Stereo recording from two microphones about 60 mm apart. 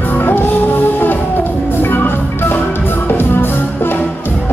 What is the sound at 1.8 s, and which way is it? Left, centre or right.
Music, left.